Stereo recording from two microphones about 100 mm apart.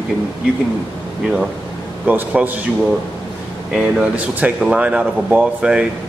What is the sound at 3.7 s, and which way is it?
Speech, 10° right (ahead or behind).